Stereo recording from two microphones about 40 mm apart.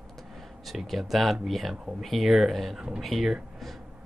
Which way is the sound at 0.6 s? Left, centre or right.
Centre.